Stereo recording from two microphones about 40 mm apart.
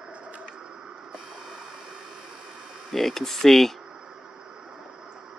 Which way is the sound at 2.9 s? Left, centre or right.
Centre.